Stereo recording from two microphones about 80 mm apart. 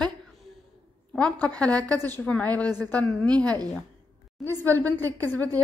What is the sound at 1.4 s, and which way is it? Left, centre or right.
A woman's voice, centre.